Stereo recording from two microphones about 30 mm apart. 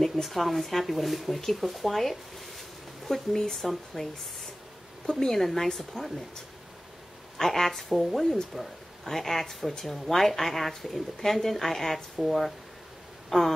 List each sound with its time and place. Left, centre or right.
0.0 s speech: centre
3.3 s speech: centre
3.9 s speech: centre
5.2 s speech: centre
7.3 s speech: centre
7.9 s speech: centre
8.5 s speech: centre